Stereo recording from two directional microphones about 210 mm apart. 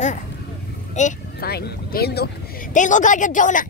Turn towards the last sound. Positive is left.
turn(degrees=40)  # may be behind; listen again after turning